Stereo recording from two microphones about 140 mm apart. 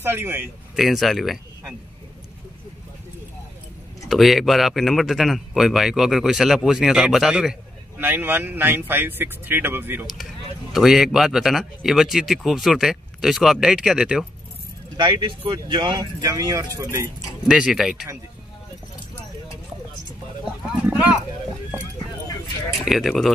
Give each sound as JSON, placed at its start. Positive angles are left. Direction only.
{"t": 0.0, "sound": "speech", "side_deg": -15}
{"t": 0.7, "sound": "speech", "side_deg": 0}
{"t": 4.1, "sound": "speech", "side_deg": 0}
{"t": 8.0, "sound": "speech", "side_deg": -15}
{"t": 10.7, "sound": "speech", "side_deg": 0}
{"t": 15.0, "sound": "speech", "side_deg": -35}
{"t": 17.5, "sound": "speech", "side_deg": -5}
{"t": 20.8, "sound": "speech", "side_deg": -10}
{"t": 22.8, "sound": "speech", "side_deg": 0}